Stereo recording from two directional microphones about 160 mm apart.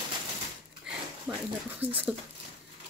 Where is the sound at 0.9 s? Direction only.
5° right (ahead or behind).